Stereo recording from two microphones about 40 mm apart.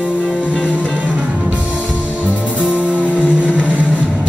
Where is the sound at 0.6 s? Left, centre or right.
Left.